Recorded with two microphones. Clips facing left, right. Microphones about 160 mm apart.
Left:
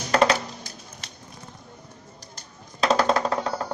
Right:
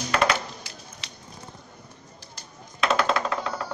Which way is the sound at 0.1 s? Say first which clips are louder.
Left 4 dB; 35° left (ahead or behind).